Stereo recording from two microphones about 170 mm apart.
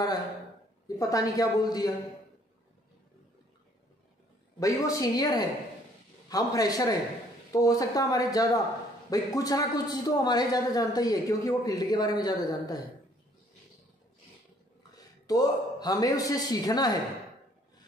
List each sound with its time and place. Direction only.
0.8 s a man's voice: 20° left (ahead or behind)
4.6 s a man's voice: 20° left (ahead or behind)
14.8 s a man's voice: 20° left (ahead or behind)